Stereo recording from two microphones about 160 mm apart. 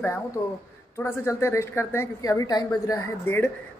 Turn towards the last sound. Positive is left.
turn(degrees=15)  # may be behind; listen again after turning